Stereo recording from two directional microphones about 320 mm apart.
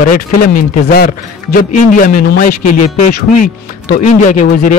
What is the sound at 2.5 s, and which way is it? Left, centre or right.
A man's voice, left.